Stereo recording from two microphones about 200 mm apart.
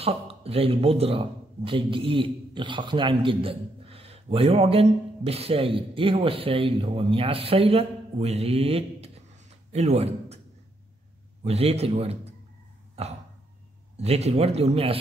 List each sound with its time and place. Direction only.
0.0 s a man's voice: 30° right (ahead or behind)
11.4 s speech: 30° right (ahead or behind)
13.9 s speech: 30° right (ahead or behind)